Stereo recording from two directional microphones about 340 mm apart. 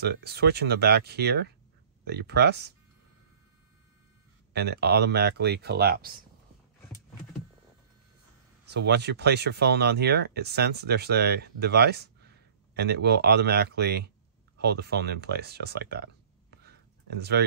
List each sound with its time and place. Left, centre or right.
0.0 s speech: right
4.6 s speech: right
8.6 s speech: right